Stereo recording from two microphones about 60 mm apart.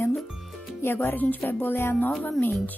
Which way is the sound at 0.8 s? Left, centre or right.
Left.